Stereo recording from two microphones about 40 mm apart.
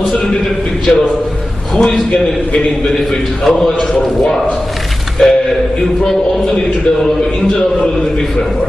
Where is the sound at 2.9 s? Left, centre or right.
Centre.